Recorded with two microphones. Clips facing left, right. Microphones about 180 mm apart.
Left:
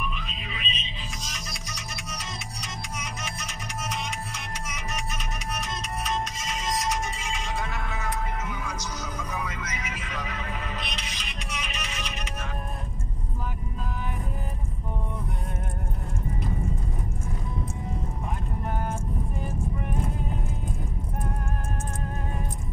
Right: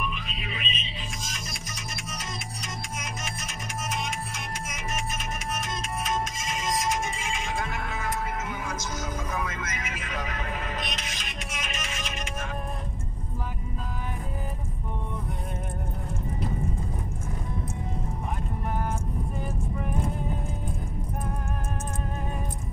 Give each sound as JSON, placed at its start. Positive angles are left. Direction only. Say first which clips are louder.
{"t": 0.1, "sound": "music", "louder": "right 1 dB", "side_deg": -50}